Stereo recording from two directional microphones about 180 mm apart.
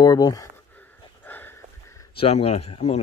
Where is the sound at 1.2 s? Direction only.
10° left (ahead or behind).